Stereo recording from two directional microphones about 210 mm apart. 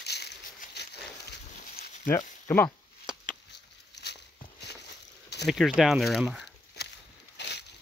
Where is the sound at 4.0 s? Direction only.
55° left (ahead or behind).